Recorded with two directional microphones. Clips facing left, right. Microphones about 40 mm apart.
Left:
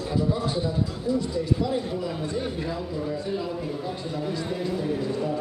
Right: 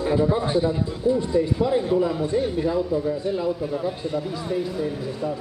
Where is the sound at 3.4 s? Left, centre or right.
Centre.